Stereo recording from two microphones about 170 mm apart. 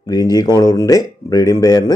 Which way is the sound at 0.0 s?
25° left (ahead or behind).